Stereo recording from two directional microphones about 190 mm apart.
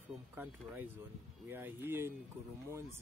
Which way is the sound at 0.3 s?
10° right (ahead or behind).